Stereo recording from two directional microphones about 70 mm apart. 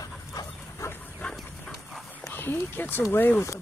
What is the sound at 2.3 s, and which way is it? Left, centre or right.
Speech, left.